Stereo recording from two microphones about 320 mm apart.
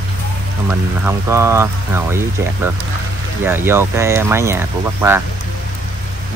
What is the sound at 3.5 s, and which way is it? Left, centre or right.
Speech, centre.